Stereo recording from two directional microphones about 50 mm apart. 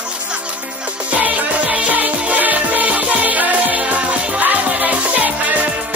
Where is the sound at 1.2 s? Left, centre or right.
Right.